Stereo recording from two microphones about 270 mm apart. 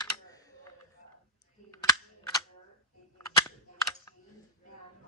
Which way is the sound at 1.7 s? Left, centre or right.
Centre.